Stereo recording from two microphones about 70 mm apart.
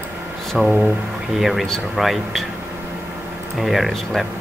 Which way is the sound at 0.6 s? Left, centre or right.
Right.